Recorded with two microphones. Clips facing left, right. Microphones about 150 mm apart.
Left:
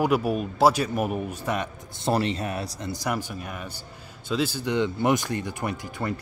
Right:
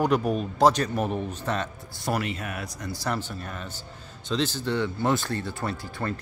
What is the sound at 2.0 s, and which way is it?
Speech, 30° left (ahead or behind).